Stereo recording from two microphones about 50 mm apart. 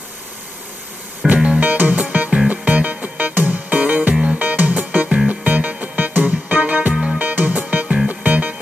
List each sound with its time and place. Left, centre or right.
1.2 s music: centre
1.6 s music: right
4.1 s music: centre
4.4 s music: right
6.9 s music: centre
7.2 s music: right